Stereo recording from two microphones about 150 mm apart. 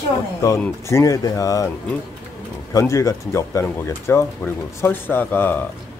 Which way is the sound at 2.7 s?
20° left (ahead or behind).